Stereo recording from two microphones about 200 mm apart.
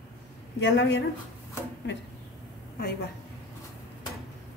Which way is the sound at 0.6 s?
65° left (ahead or behind).